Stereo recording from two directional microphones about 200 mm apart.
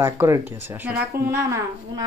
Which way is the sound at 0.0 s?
10° right (ahead or behind).